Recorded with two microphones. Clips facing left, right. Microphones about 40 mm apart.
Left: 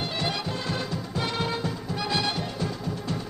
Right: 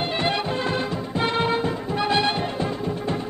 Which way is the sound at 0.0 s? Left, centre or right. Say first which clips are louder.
Right 6 dB; right.